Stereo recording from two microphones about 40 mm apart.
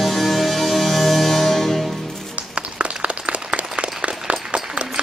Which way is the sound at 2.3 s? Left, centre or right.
Right.